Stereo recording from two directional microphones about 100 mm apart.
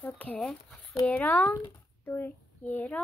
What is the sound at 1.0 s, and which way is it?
A child's voice, 15° left (ahead or behind).